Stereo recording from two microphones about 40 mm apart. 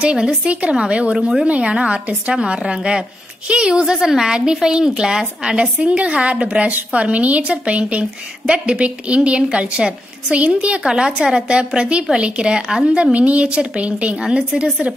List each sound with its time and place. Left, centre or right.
0.0 s a woman's voice: right
1.1 s a woman's voice: centre
1.5 s a woman's voice: right
10.8 s a woman's voice: centre